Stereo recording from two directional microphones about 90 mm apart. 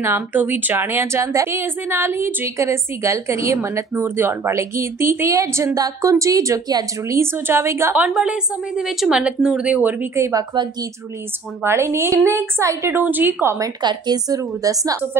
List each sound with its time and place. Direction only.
0.0 s a woman's voice: 25° right (ahead or behind); by 7.2 s 40° right (ahead or behind)
7.2 s a woman's voice: 25° right (ahead or behind)
8.1 s a woman's voice: 5° right (ahead or behind)
10.1 s a woman's voice: 30° right (ahead or behind)
10.5 s speech: 60° right (ahead or behind)
11.6 s a woman's voice: 30° right (ahead or behind)
13.5 s a woman's voice: 40° right (ahead or behind)